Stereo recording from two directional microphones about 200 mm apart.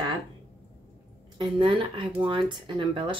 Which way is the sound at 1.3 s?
25° right (ahead or behind).